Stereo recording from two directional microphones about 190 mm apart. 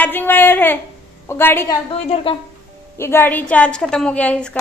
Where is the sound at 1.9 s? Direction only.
30° left (ahead or behind).